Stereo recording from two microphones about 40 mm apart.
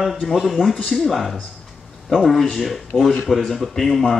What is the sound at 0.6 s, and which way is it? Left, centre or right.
Speech, right.